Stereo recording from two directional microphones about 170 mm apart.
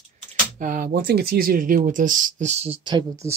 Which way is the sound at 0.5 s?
55° right (ahead or behind).